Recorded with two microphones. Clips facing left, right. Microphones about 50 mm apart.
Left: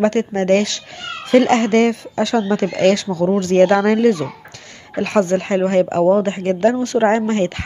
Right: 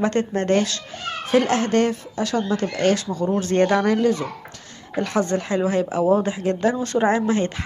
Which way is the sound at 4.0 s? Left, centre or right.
Left.